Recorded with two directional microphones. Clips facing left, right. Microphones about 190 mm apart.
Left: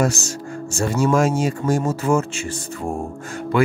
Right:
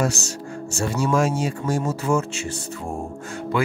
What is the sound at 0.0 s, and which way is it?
Speech, 50° left (ahead or behind).